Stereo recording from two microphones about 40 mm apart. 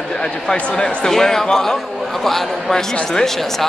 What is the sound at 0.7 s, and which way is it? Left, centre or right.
A man's voice, centre.